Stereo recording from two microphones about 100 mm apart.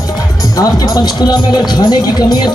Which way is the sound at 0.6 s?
40° left (ahead or behind).